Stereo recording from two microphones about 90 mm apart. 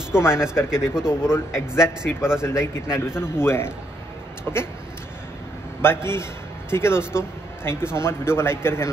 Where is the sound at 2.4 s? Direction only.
30° left (ahead or behind).